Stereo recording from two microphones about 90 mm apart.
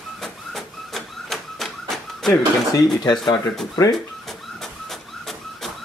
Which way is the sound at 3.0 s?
50° left (ahead or behind).